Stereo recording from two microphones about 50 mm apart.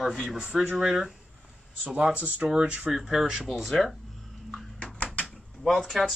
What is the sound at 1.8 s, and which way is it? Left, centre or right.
Speech, right.